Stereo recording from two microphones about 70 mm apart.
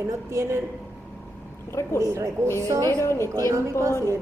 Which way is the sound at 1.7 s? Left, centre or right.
Left.